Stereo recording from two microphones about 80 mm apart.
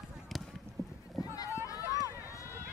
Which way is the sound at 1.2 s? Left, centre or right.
Left.